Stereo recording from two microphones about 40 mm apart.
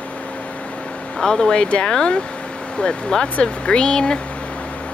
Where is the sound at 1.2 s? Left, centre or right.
Centre.